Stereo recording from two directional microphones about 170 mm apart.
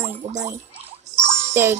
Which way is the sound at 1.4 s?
15° right (ahead or behind).